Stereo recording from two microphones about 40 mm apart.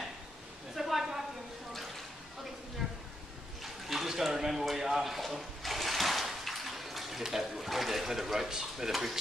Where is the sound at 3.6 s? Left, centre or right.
Centre.